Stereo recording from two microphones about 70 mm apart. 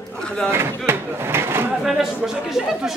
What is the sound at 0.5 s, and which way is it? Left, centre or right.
Speech, right.